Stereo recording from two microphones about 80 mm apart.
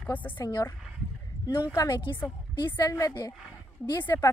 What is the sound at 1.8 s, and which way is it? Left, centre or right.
Speech, left.